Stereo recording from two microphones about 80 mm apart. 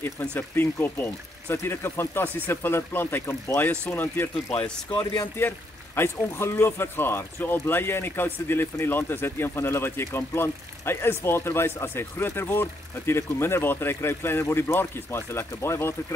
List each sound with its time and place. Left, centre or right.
0.2 s speech: left
4.5 s speech: centre
4.9 s speech: left
5.9 s speech: left